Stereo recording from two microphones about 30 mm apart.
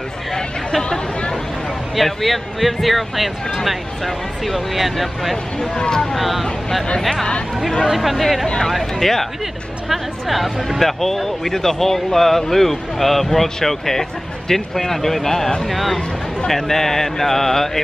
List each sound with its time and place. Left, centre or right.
2.0 s speech: centre
5.8 s speech: left
6.1 s speech: centre
9.0 s speech: centre
9.8 s speech: centre
15.7 s speech: centre